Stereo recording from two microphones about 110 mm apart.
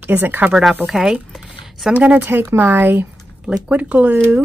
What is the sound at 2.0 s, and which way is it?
Speech, 15° right (ahead or behind).